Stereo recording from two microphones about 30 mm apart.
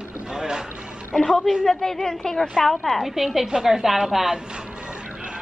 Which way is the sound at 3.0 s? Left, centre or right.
Centre.